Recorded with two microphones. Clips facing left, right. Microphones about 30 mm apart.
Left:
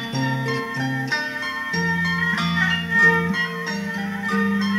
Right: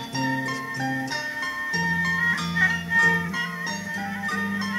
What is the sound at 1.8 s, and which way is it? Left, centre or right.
Music, left.